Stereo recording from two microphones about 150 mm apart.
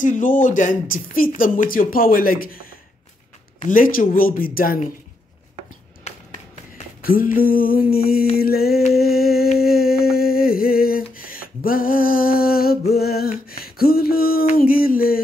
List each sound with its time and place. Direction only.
0.0 s speech: 60° left (ahead or behind)
6.1 s finger snapping: 50° left (ahead or behind)
7.0 s speech: 75° left (ahead or behind)
8.4 s a sound: 90° left
9.6 s humming: 90° left
13.5 s a sound: 85° left
14.6 s speech: 75° left (ahead or behind)